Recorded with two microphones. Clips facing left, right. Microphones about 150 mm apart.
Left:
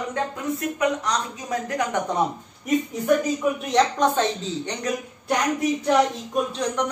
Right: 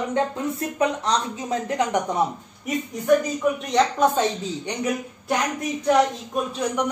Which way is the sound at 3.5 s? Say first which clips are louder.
Even; centre (ahead or behind).